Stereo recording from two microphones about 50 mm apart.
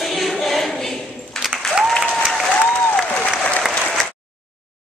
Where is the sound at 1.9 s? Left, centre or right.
Centre.